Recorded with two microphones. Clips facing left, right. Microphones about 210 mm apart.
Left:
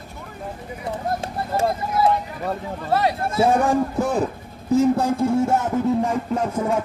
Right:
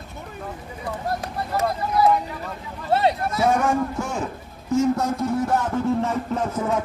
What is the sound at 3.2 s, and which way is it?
A man's voice, 30° left (ahead or behind).